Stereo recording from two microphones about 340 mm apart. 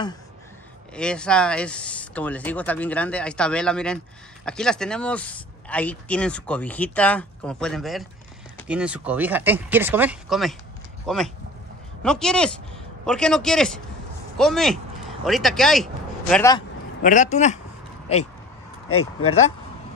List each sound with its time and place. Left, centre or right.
0.9 s speech: centre
17.0 s speech: left